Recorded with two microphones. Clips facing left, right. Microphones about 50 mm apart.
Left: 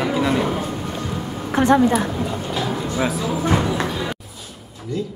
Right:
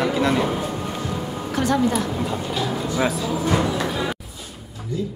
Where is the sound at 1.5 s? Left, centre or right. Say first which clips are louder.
Left 5 dB; left.